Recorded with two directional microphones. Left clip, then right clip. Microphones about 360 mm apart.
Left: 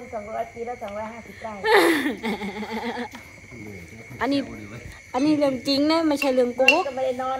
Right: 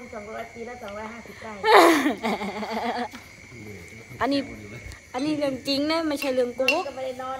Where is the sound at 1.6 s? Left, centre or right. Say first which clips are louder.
Right 3 dB; centre.